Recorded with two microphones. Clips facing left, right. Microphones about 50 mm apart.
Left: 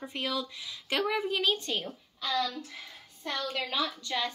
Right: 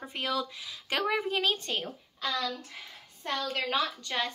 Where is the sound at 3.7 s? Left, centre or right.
Right.